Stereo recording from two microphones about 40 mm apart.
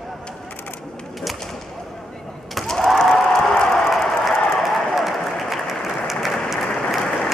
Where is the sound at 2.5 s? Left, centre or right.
Centre.